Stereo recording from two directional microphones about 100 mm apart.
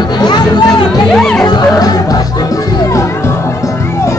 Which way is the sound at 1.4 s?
40° left (ahead or behind).